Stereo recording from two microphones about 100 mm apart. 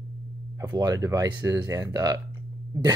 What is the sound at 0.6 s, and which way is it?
Speech, 35° right (ahead or behind).